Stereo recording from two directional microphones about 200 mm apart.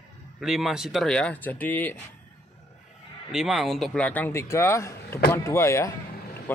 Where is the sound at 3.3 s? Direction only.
Centre (ahead or behind).